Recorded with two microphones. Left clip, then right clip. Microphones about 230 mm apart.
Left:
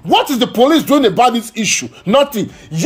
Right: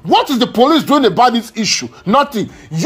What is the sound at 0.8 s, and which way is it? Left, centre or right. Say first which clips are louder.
Chopping: even; centre.